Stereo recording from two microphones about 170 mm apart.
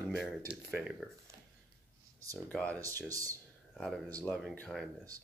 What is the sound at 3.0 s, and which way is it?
Speech, 20° right (ahead or behind).